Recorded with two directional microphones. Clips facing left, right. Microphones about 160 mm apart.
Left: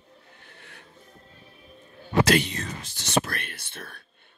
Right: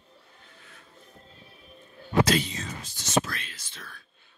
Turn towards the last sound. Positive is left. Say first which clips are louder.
# left 5 dB
turn(degrees=60)  # may be behind; listen again after turning